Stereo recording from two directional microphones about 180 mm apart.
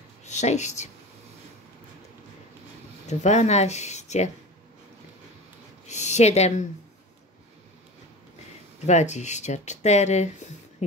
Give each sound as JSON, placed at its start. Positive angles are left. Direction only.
{"t": 0.2, "sound": "speech", "side_deg": 40}
{"t": 3.1, "sound": "speech", "side_deg": 40}
{"t": 5.9, "sound": "a sound", "side_deg": 40}
{"t": 8.8, "sound": "speech", "side_deg": 40}